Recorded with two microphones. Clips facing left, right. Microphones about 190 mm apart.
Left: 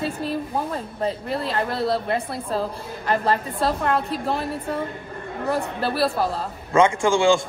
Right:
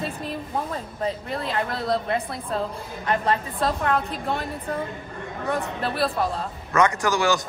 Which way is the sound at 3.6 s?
30° left (ahead or behind).